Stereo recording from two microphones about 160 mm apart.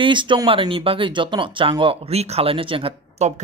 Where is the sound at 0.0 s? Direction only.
30° right (ahead or behind).